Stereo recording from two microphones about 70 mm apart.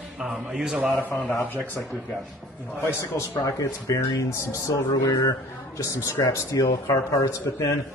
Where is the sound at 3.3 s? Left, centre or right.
Left.